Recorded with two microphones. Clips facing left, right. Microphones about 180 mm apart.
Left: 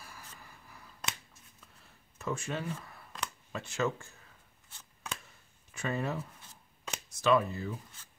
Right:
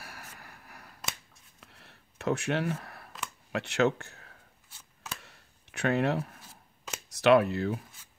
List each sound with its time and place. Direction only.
0.0 s a sound: 75° right (ahead or behind)
3.5 s speech: 70° right (ahead or behind)
4.6 s chopping: 10° right (ahead or behind)
5.2 s a sound: 75° right (ahead or behind)
6.4 s shuffling cards: 5° right (ahead or behind)
7.1 s speech: 75° right (ahead or behind)